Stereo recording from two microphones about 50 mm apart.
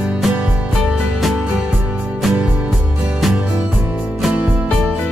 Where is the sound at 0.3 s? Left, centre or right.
Right.